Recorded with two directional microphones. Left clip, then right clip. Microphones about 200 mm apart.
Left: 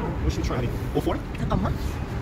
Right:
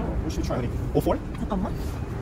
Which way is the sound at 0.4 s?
70° right (ahead or behind).